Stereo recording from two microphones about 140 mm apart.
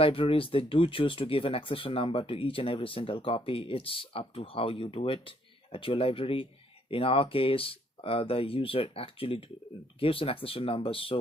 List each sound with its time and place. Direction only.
0.0 s speech: 40° left (ahead or behind)